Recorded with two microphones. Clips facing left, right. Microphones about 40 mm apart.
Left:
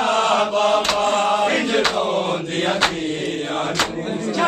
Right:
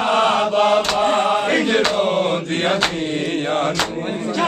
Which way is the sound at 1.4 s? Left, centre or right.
Centre.